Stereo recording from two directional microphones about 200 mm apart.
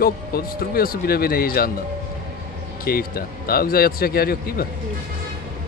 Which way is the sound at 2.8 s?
50° left (ahead or behind).